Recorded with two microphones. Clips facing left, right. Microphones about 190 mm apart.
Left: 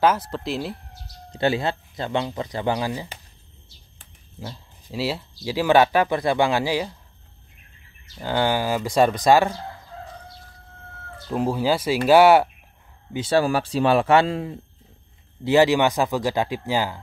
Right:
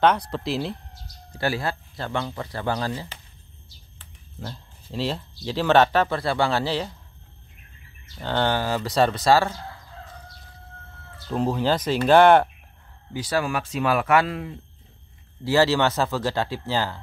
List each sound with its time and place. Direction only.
0.0 s speech: 5° left (ahead or behind)
1.3 s speech: 20° left (ahead or behind)
4.8 s speech: 10° left (ahead or behind)
8.2 s speech: 10° left (ahead or behind)
11.2 s speech: 10° left (ahead or behind)
13.1 s speech: 25° left (ahead or behind)
15.4 s speech: 15° left (ahead or behind)